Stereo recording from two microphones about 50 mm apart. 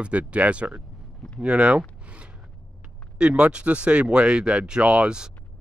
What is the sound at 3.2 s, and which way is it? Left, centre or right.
Speech, right.